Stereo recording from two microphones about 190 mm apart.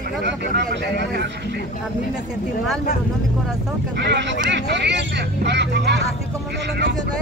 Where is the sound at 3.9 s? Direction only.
65° right (ahead or behind).